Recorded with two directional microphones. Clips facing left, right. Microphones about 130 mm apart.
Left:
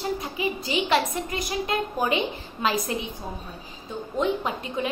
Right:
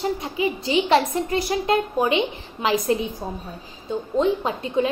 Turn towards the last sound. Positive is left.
turn(degrees=-30)  # may be behind; listen again after turning